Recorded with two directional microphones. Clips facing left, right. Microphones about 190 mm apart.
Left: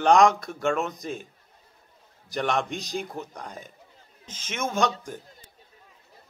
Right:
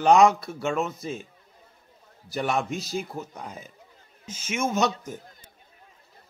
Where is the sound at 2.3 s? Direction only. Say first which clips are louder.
Even; 5° right (ahead or behind).